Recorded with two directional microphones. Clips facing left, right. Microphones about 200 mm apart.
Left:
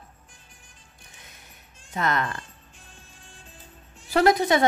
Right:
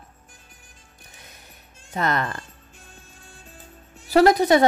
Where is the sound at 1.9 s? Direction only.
35° right (ahead or behind).